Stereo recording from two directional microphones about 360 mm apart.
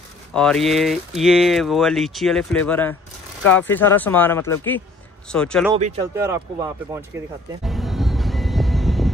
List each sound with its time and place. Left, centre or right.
0.3 s speech: centre
5.8 s speech: centre
6.2 s speech: centre
7.6 s vehicle: centre